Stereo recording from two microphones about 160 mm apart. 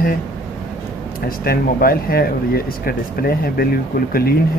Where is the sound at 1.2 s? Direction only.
65° left (ahead or behind).